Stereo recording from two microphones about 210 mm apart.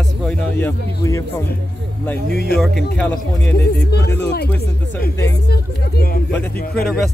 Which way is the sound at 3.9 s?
55° left (ahead or behind).